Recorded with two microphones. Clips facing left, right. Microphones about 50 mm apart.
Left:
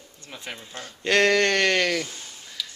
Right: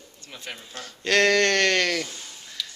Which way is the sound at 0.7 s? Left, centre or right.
Left.